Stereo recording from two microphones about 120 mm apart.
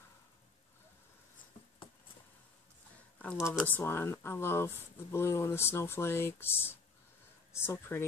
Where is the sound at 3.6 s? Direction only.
20° left (ahead or behind).